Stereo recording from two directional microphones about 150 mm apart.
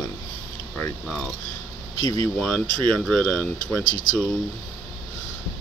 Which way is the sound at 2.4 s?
Centre (ahead or behind).